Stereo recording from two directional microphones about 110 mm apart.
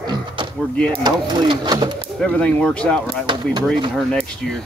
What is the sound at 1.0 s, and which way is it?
Speech, 40° right (ahead or behind).